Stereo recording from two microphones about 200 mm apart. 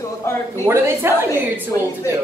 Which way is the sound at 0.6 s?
10° right (ahead or behind).